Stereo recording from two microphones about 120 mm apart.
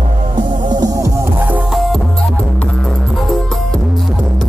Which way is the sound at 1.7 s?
Centre (ahead or behind).